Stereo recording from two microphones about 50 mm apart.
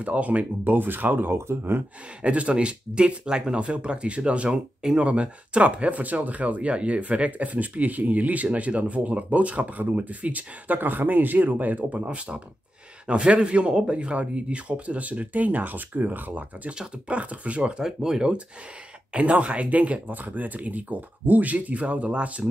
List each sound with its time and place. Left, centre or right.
0.0 s speech: right
2.2 s speech: right
17.7 s speech: centre
19.1 s speech: right